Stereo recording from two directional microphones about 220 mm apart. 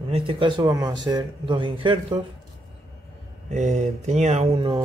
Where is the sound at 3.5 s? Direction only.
30° right (ahead or behind).